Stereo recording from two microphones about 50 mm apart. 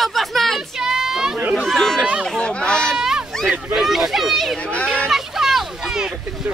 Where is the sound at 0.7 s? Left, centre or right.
Centre.